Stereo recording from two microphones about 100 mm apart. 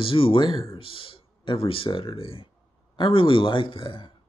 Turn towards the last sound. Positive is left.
turn(degrees=55)  # may be behind; listen again after turning